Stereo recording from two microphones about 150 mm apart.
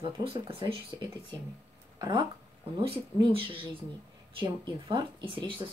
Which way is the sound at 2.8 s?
40° right (ahead or behind).